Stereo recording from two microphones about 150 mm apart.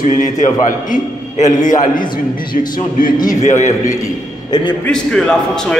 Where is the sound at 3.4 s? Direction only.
50° left (ahead or behind).